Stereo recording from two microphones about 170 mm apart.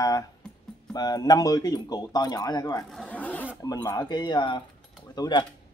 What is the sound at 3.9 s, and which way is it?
Speech, 25° left (ahead or behind).